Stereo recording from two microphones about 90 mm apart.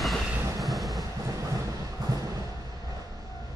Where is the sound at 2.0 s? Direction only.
40° right (ahead or behind).